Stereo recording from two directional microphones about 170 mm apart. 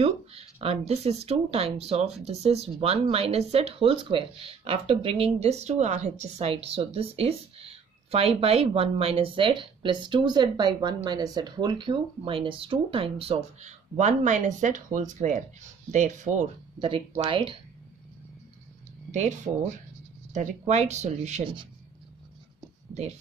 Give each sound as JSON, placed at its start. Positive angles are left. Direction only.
{"t": 0.0, "sound": "speech", "side_deg": -35}
{"t": 16.8, "sound": "speech", "side_deg": -35}
{"t": 19.1, "sound": "speech", "side_deg": -45}